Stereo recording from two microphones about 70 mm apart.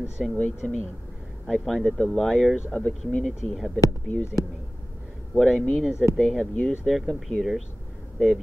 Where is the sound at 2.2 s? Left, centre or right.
Centre.